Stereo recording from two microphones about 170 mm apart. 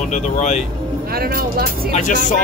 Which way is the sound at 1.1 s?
60° right (ahead or behind).